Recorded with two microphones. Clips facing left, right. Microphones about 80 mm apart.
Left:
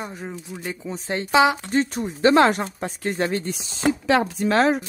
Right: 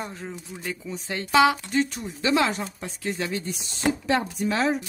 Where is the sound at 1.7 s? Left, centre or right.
Left.